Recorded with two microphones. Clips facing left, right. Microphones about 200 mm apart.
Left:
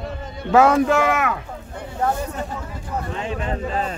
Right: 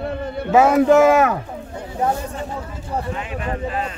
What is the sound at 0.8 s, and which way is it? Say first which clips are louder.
Speech: right 6 dB; 35° right (ahead or behind).